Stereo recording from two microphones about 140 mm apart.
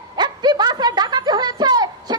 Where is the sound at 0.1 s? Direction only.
30° right (ahead or behind).